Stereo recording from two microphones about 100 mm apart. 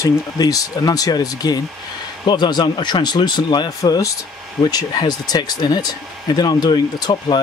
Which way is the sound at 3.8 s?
35° left (ahead or behind).